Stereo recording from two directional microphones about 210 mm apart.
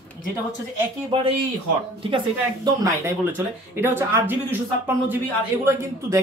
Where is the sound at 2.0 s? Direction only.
20° right (ahead or behind).